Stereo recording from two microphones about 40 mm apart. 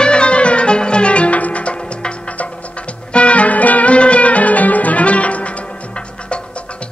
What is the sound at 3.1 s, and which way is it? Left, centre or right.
Music, left.